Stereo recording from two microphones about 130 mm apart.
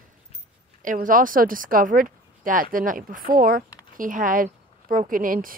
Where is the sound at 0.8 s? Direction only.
90° right.